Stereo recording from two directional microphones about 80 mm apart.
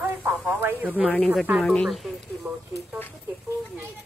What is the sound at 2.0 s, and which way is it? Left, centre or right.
Speech, centre.